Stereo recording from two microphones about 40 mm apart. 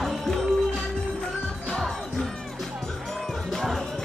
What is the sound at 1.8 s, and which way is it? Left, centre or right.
Music, centre.